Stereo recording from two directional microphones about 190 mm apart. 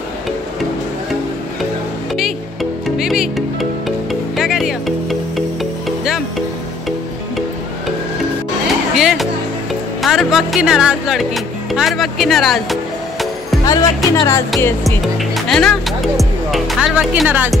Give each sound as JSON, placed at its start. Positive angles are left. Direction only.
{"t": 3.0, "sound": "speech", "side_deg": 0}
{"t": 4.1, "sound": "music", "side_deg": 0}
{"t": 8.9, "sound": "music", "side_deg": 0}
{"t": 10.0, "sound": "speech", "side_deg": 0}
{"t": 13.7, "sound": "speech", "side_deg": 20}
{"t": 14.6, "sound": "music", "side_deg": 10}
{"t": 15.1, "sound": "speech", "side_deg": 0}